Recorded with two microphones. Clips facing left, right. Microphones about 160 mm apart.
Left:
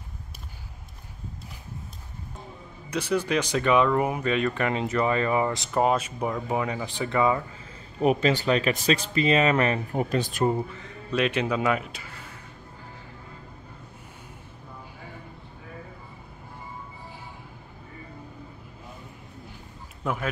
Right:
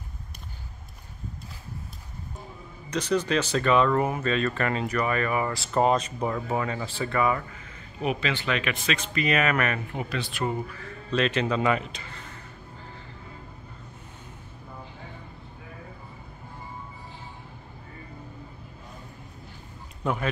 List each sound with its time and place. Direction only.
2.9 s speech: 10° left (ahead or behind)
5.7 s speech: 5° left (ahead or behind)
8.0 s speech: 40° left (ahead or behind)
9.9 s speech: 45° left (ahead or behind)
10.5 s speech: 25° left (ahead or behind)
11.1 s speech: 10° left (ahead or behind)
20.0 s speech: centre (ahead or behind)